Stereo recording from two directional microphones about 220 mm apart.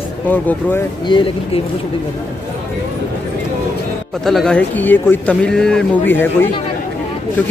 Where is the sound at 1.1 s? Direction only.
20° left (ahead or behind).